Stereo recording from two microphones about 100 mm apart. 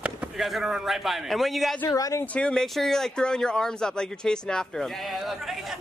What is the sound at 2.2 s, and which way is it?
Speech, 15° left (ahead or behind).